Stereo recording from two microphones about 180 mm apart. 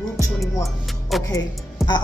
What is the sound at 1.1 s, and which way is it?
Speech, centre (ahead or behind).